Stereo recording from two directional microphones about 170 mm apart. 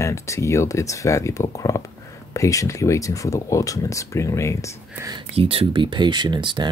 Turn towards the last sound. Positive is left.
turn(degrees=-25)  # may be behind; listen again after turning